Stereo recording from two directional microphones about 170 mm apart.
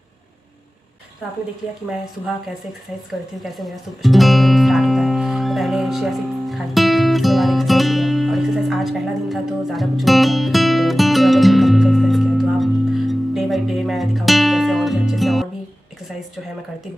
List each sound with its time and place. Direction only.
3.1 s music: centre (ahead or behind)